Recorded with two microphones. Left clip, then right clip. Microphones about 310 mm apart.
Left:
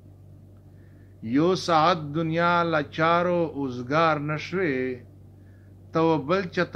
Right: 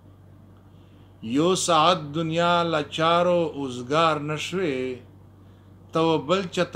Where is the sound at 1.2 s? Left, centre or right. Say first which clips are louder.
Right 1 dB; right.